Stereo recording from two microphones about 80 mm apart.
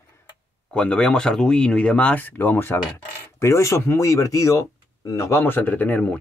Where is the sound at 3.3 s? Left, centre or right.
Left.